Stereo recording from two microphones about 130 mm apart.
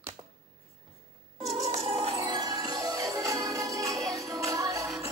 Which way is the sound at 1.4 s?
50° right (ahead or behind).